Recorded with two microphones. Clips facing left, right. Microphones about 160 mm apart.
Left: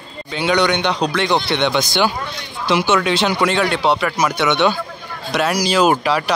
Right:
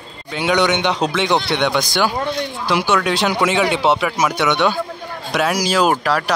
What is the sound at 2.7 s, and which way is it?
Speech, 5° right (ahead or behind).